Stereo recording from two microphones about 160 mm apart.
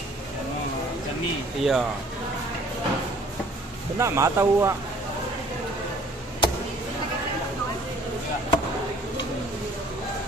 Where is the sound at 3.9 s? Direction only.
20° right (ahead or behind).